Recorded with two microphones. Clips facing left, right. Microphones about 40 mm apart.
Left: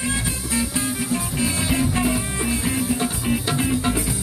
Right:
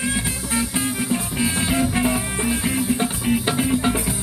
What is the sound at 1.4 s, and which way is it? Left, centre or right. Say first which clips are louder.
Music: right 2 dB; centre.